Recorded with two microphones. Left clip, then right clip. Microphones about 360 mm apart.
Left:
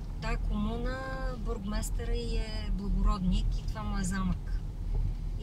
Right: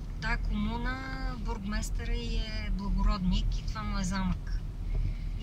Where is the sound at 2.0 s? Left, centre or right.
Left.